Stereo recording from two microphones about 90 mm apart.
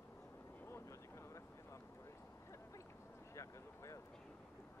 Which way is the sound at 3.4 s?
35° left (ahead or behind).